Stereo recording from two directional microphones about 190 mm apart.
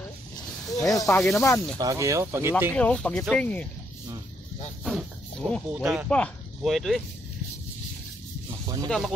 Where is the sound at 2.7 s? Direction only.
5° left (ahead or behind).